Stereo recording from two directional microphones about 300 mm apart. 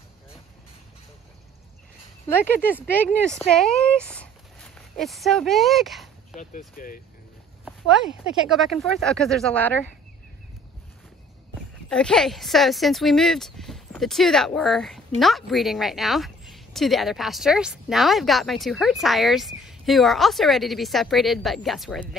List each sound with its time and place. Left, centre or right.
2.2 s speech: centre
6.8 s speech: left
8.5 s speech: centre
11.9 s speech: centre